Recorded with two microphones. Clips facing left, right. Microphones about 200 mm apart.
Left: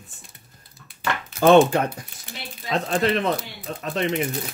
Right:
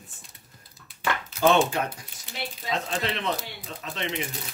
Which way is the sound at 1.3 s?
55° left (ahead or behind).